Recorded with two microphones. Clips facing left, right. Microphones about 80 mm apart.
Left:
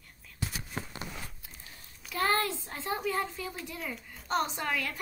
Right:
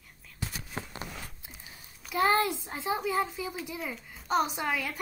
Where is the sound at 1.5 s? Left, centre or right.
Centre.